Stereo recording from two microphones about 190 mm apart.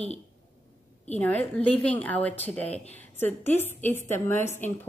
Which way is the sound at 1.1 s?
10° left (ahead or behind).